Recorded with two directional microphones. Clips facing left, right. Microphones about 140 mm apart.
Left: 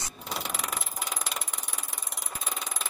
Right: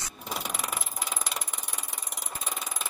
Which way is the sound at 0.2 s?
5° right (ahead or behind).